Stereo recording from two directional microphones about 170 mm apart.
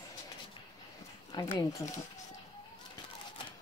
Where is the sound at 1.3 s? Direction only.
25° left (ahead or behind).